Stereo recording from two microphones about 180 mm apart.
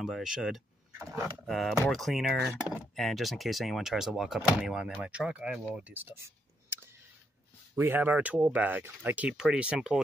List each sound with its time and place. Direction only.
0.0 s speech: centre (ahead or behind)